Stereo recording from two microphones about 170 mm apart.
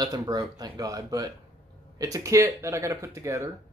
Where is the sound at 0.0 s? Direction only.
25° right (ahead or behind).